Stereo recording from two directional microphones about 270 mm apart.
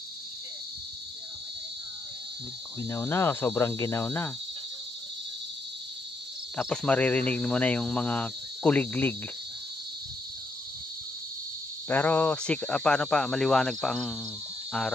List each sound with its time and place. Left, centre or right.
2.8 s speech: centre
6.5 s speech: centre
11.9 s speech: centre